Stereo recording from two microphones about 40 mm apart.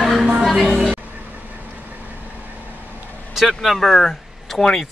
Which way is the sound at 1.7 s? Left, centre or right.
Right.